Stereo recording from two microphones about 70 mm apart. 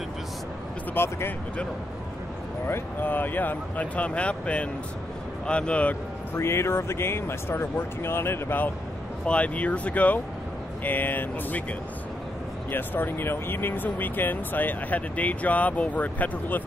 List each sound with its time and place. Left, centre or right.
0.9 s speech: left
2.6 s speech: left
6.3 s speech: left
9.2 s speech: centre
12.7 s speech: left